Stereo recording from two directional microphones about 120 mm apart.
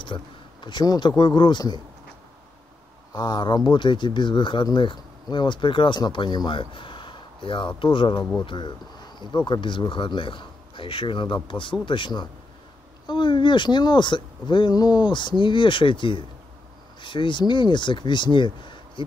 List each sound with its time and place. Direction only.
0.0 s speech: 45° left (ahead or behind)
3.1 s a man's voice: 35° left (ahead or behind)